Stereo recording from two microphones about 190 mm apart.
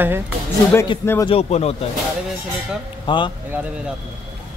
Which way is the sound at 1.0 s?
15° left (ahead or behind).